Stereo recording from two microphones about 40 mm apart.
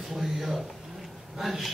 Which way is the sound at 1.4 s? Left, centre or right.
Centre.